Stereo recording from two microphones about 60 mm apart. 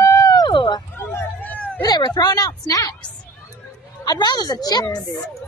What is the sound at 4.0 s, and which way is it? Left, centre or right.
A woman's voice, left.